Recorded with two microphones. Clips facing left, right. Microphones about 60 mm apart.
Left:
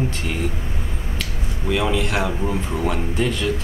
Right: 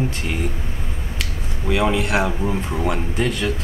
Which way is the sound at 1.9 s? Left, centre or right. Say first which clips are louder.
Right 2 dB; right.